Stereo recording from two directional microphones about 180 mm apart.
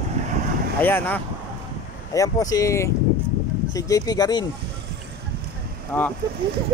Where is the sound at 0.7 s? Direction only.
10° left (ahead or behind).